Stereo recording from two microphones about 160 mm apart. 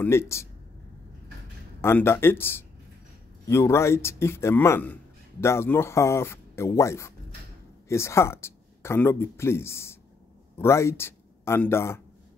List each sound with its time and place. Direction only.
0.0 s speech: 15° left (ahead or behind)
1.8 s speech: 15° left (ahead or behind)